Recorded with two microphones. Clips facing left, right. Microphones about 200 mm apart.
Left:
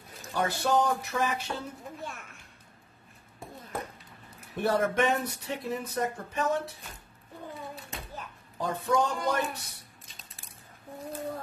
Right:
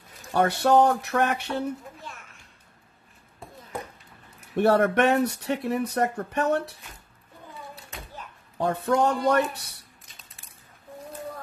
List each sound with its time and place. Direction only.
0.3 s speech: 65° right (ahead or behind)
4.6 s speech: 65° right (ahead or behind)
8.5 s speech: 60° right (ahead or behind)